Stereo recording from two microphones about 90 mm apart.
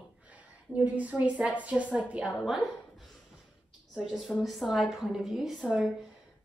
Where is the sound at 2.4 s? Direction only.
Centre (ahead or behind).